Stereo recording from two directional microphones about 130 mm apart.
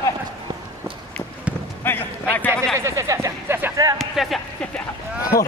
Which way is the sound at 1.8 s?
15° left (ahead or behind).